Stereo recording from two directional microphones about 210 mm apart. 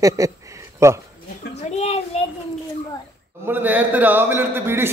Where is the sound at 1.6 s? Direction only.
30° left (ahead or behind).